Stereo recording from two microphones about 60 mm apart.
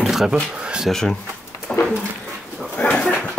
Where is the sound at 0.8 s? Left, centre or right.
Centre.